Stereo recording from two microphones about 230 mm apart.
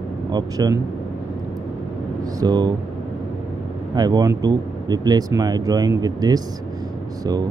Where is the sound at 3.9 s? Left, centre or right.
Centre.